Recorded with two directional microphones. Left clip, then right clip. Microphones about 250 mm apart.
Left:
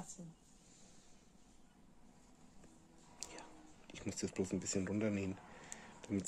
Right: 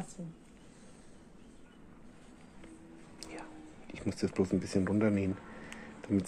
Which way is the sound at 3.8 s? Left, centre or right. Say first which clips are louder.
Right 8 dB; centre.